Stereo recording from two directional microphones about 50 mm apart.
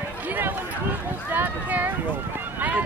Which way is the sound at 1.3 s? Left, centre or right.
Right.